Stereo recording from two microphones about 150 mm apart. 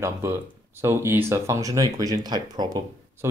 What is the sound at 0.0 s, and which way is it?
Speech, 15° right (ahead or behind).